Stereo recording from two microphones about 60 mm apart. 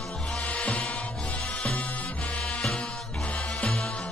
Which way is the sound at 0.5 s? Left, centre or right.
Left.